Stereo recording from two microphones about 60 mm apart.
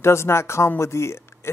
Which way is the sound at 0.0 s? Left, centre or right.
Left.